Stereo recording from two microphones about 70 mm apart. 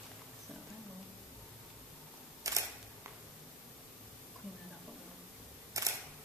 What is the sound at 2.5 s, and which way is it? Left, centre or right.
Camera, right.